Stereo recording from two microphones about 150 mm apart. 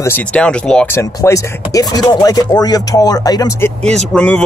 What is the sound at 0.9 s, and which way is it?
Speech, 20° left (ahead or behind).